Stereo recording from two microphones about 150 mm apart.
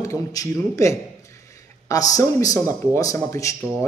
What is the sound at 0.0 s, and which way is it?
A man's voice, 20° left (ahead or behind).